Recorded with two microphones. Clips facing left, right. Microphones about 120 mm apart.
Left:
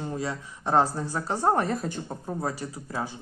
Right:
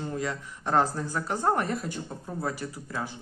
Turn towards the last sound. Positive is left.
turn(degrees=30)  # may be behind; listen again after turning